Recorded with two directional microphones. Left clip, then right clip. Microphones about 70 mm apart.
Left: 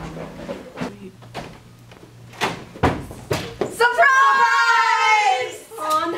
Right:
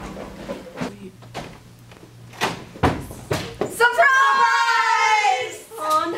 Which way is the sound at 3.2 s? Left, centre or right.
Centre.